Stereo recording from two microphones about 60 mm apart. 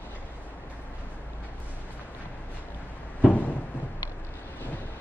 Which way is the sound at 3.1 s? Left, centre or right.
Left.